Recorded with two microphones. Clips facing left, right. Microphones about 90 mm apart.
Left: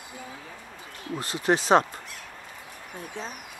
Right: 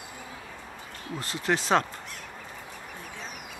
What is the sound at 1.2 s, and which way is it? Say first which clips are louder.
Speech: left 4 dB; 20° left (ahead or behind).